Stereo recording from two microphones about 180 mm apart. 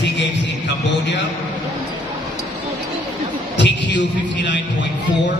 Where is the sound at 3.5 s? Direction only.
80° left.